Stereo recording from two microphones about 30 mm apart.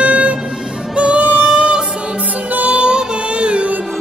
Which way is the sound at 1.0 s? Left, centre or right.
Right.